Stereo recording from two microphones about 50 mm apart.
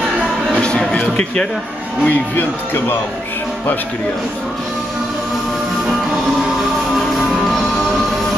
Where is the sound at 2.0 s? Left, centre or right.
Left.